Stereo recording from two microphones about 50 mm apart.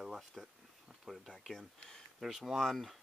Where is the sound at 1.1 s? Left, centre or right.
Centre.